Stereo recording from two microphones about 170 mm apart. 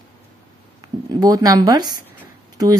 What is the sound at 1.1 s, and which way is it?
Speech, 20° right (ahead or behind).